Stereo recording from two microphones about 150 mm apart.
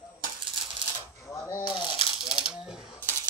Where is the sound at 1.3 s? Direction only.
20° left (ahead or behind).